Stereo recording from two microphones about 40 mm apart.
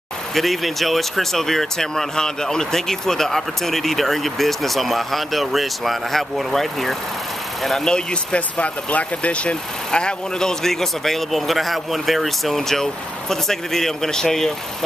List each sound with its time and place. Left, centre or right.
0.3 s speech: centre
7.8 s speech: left
8.4 s speech: left
9.8 s speech: centre
10.6 s speech: centre